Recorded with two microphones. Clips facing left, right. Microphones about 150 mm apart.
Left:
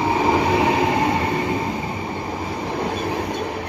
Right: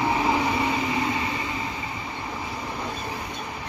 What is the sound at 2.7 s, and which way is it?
Train, 65° left (ahead or behind).